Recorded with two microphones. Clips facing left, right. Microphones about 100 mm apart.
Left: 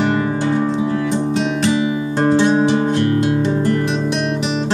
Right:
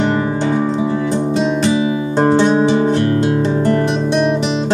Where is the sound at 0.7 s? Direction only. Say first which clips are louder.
Right 1 dB; 20° right (ahead or behind).